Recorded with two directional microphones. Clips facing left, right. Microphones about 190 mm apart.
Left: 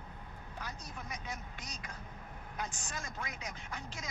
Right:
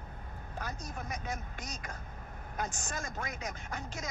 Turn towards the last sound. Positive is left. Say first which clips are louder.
# right 4 dB
turn(degrees=-45)  # may be behind; listen again after turning